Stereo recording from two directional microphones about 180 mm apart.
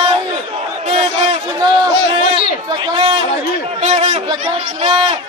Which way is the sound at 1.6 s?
20° right (ahead or behind).